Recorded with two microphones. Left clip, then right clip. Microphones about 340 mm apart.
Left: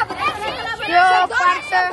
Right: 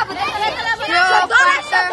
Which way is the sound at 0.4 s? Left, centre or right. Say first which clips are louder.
Right 5 dB; right.